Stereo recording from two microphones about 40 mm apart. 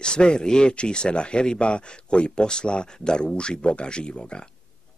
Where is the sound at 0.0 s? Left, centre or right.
Left.